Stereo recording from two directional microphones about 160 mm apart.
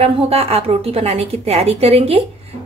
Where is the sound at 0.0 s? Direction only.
40° right (ahead or behind).